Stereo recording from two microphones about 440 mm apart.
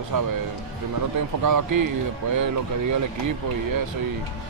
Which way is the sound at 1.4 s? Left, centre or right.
Right.